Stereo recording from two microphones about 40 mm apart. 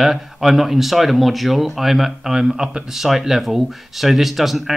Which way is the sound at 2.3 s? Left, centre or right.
Centre.